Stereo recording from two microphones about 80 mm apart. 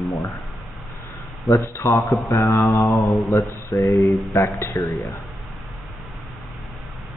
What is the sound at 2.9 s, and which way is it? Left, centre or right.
Speech, centre.